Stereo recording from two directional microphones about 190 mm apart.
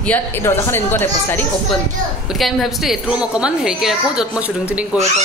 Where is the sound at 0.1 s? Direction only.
10° left (ahead or behind).